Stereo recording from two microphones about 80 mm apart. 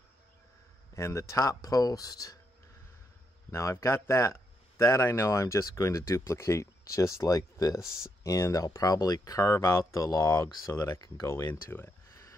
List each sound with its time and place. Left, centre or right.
0.9 s speech: left
3.5 s speech: left
11.2 s speech: left